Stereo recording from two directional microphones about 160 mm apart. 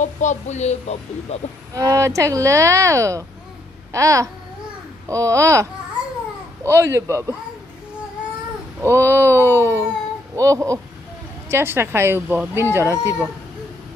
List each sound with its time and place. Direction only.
0.0 s speech: 50° left (ahead or behind)
1.7 s speech: 20° right (ahead or behind)
8.8 s a sound: 15° right (ahead or behind)
10.3 s speech: 20° right (ahead or behind)